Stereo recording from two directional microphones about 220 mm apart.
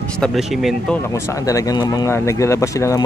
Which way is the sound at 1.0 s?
15° left (ahead or behind).